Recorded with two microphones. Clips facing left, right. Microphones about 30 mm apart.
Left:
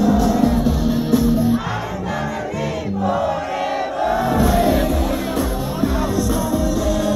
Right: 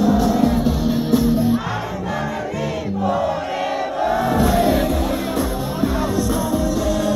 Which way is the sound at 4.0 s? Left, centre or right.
Centre.